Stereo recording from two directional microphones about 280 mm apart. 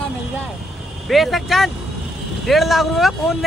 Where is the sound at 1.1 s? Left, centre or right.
Centre.